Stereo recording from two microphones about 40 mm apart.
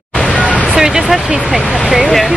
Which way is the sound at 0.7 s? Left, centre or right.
Centre.